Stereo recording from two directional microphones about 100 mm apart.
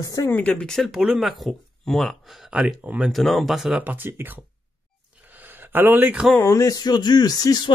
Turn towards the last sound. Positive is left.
turn(degrees=40)  # may be behind; listen again after turning